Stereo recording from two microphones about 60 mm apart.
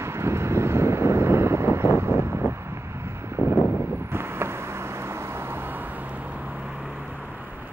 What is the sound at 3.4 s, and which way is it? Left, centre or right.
Vehicle, left.